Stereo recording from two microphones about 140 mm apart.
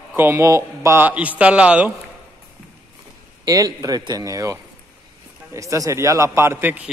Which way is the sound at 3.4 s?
25° right (ahead or behind).